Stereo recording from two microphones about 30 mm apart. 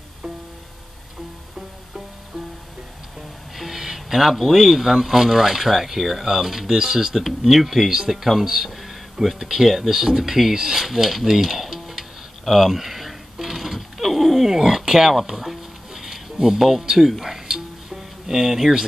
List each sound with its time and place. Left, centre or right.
3.5 s speech: centre
7.2 s speech: centre
8.6 s a sound: centre
9.7 s speech: centre
10.9 s speech: centre
11.4 s music: centre